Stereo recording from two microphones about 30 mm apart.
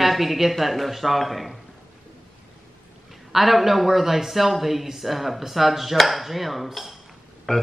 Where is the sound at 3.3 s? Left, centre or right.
Centre.